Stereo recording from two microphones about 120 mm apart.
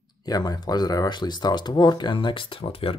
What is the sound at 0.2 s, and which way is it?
Speech, 35° left (ahead or behind).